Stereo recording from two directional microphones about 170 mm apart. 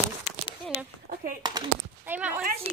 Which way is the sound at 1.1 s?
60° right (ahead or behind).